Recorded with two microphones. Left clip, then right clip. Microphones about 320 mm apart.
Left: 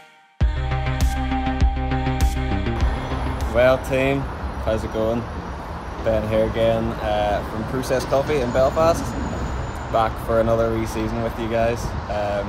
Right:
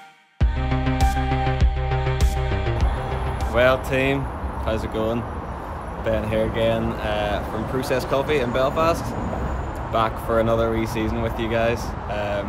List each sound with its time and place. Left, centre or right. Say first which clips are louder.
0.7 s music: right 2 dB; centre
3.5 s speech: left 1 dB; centre
6.3 s speech: left 2 dB; centre